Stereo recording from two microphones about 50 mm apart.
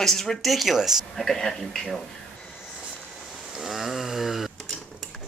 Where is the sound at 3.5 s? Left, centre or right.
Centre.